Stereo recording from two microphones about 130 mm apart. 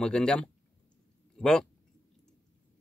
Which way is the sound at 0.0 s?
5° left (ahead or behind).